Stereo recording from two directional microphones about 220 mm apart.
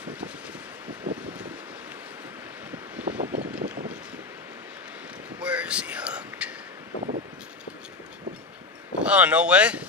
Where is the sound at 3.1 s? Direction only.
35° right (ahead or behind).